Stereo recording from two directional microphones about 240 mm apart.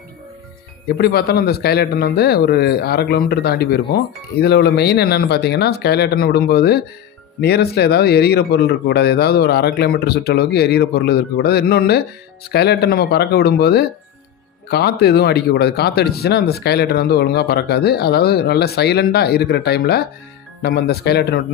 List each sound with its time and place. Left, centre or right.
0.8 s a man's voice: left